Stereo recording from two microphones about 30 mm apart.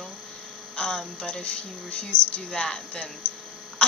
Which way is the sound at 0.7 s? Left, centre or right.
Left.